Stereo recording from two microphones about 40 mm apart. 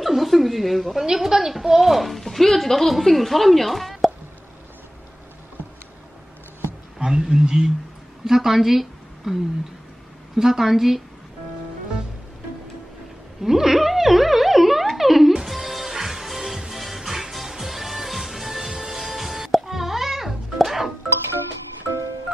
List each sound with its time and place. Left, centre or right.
0.0 s speech: centre
7.0 s a woman's voice: centre
13.4 s a sound: centre
15.0 s music: centre